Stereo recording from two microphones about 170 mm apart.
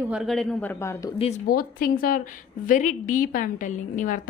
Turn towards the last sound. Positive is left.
turn(degrees=50)  # may be behind; listen again after turning